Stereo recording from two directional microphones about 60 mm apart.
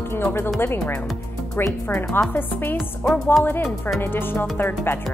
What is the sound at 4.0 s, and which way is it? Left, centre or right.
Speech, left.